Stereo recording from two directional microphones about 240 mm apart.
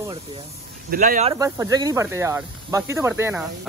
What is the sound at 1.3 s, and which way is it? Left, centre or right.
Speech, centre.